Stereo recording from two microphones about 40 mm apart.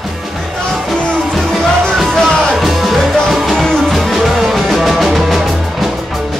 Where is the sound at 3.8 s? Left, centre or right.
Centre.